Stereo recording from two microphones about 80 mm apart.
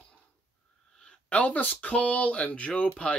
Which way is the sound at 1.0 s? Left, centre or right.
Centre.